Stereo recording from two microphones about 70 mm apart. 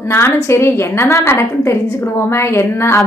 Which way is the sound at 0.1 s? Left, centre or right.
Left.